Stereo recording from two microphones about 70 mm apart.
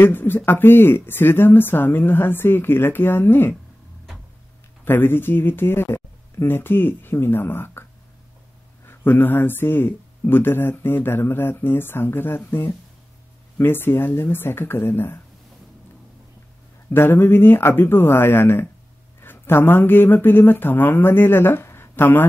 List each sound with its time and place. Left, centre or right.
0.0 s speech: left
4.8 s speech: left
8.8 s speech: left
16.9 s speech: left